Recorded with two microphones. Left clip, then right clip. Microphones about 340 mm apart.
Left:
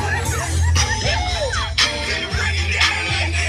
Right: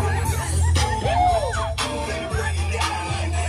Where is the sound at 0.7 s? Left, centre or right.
Right.